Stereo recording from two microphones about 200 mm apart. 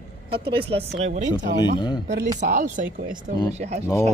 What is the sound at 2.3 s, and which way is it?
Speech, 40° right (ahead or behind).